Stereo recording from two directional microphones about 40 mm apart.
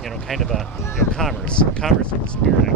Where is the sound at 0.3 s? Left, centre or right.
Centre.